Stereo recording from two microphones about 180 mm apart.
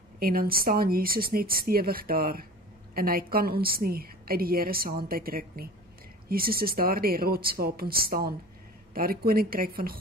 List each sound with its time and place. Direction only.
0.2 s a woman's voice: 55° right (ahead or behind)